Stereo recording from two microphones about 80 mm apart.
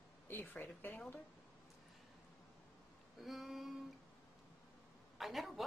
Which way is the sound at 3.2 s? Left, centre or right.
Centre.